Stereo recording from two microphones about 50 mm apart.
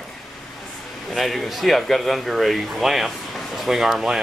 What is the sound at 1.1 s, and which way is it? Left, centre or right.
Speech, centre.